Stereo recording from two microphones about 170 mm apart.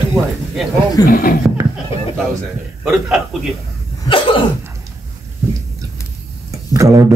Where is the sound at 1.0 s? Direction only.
55° left (ahead or behind).